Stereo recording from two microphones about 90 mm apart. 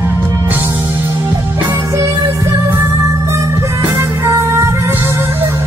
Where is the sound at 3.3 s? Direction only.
30° right (ahead or behind).